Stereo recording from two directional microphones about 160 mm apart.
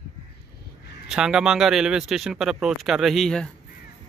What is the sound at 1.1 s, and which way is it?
Speech, 5° right (ahead or behind).